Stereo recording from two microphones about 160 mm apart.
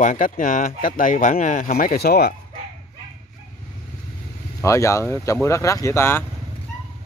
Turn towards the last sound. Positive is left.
turn(degrees=15)  # may be behind; listen again after turning